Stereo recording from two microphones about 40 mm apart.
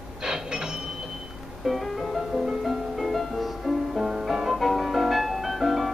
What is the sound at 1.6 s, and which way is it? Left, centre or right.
Music, centre.